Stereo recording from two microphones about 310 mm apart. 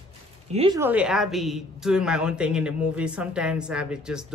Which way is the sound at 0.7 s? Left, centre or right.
Centre.